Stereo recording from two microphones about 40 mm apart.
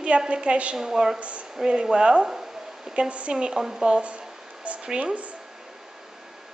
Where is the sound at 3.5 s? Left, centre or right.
Centre.